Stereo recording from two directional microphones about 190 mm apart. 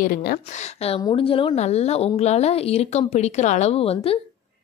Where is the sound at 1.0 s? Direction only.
30° left (ahead or behind).